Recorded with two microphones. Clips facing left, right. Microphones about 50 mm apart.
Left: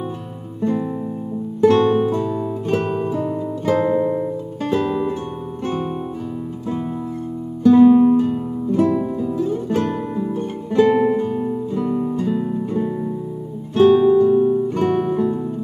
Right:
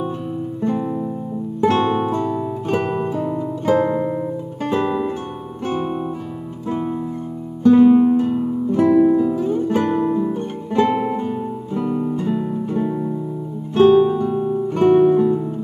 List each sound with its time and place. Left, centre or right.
1.6 s music: centre
4.6 s music: right
5.7 s guitar: centre
6.7 s music: centre
8.7 s music: right
9.1 s music: centre
11.8 s guitar: centre
13.7 s music: right
14.1 s music: centre